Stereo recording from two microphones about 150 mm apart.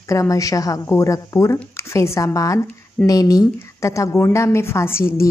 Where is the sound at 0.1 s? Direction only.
20° left (ahead or behind).